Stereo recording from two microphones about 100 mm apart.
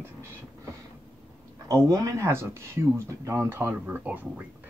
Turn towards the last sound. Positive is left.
turn(degrees=-15)  # may be behind; listen again after turning